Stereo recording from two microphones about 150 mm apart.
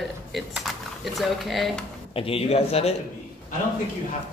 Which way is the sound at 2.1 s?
40° left (ahead or behind).